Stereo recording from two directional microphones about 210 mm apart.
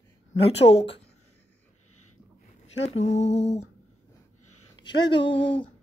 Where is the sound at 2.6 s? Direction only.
30° left (ahead or behind).